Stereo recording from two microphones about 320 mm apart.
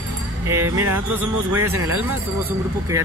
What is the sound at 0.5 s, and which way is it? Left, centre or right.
Speech, centre.